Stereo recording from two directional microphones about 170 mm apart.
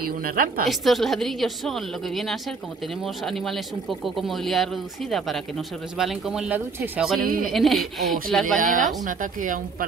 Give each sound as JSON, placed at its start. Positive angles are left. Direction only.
{"t": 0.2, "sound": "a woman's voice", "side_deg": -55}
{"t": 0.7, "sound": "speech", "side_deg": 0}
{"t": 7.2, "sound": "a woman's voice", "side_deg": -55}
{"t": 7.5, "sound": "speech", "side_deg": 0}
{"t": 8.5, "sound": "a woman's voice", "side_deg": -50}